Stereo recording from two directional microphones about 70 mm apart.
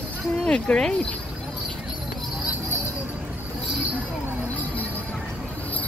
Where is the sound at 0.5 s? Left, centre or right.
Centre.